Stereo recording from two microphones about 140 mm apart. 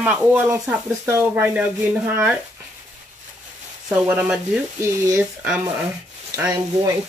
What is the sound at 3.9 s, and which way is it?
Speech, 10° right (ahead or behind).